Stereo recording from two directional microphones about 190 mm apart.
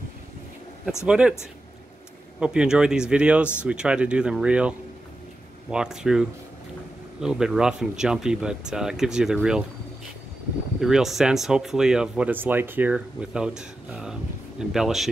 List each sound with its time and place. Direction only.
1.0 s speech: 5° right (ahead or behind)
2.4 s speech: 5° right (ahead or behind)
10.8 s speech: centre (ahead or behind)